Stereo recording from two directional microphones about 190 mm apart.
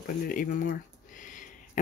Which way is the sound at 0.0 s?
45° left (ahead or behind).